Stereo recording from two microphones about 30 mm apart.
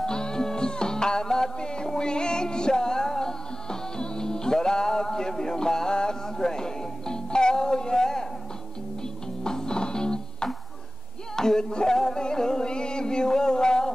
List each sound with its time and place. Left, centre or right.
0.0 s music: left
9.4 s music: left